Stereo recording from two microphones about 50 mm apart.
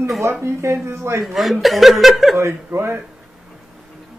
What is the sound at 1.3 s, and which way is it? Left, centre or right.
Speech, centre.